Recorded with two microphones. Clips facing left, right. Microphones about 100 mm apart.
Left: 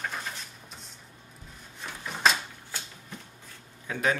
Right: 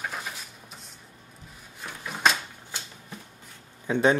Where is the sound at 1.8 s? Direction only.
5° right (ahead or behind).